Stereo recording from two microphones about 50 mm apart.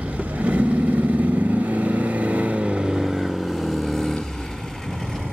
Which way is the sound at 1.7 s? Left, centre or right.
Right.